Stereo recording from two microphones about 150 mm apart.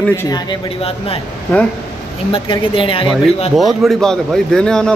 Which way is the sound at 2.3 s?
35° left (ahead or behind).